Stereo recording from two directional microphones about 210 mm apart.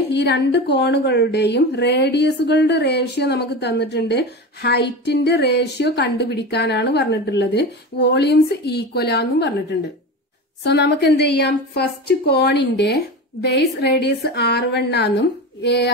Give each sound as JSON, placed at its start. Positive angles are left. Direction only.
{"t": 0.1, "sound": "a woman's voice", "side_deg": 55}